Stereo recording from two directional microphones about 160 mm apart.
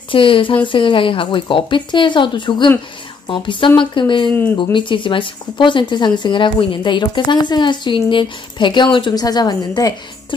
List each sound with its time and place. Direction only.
0.1 s speech: 35° left (ahead or behind)